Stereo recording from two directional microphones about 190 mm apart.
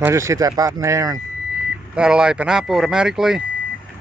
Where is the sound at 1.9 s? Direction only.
5° right (ahead or behind).